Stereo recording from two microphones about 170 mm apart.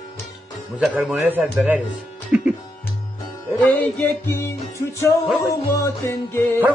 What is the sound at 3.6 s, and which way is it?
Music, 10° left (ahead or behind).